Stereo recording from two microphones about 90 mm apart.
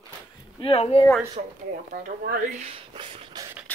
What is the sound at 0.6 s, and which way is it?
Speech, 90° left.